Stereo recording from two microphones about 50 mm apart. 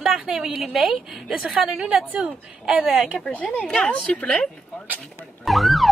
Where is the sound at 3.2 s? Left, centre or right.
Left.